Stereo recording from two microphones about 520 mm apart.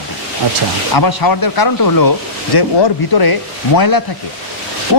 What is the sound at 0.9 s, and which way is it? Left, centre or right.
Speech, left.